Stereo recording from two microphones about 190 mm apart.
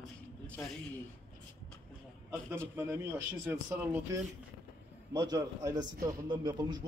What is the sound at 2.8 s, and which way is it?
A man's voice, 15° right (ahead or behind).